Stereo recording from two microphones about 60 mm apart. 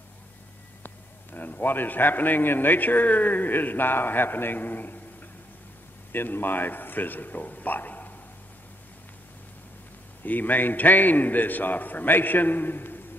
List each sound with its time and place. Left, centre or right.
0.8 s a man's voice: left
6.1 s a man's voice: left
10.2 s a man's voice: left